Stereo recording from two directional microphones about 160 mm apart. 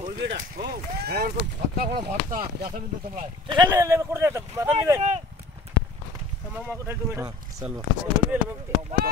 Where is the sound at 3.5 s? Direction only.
25° right (ahead or behind).